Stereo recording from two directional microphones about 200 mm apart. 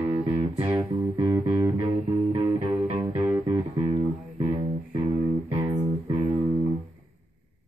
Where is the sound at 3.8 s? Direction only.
30° right (ahead or behind).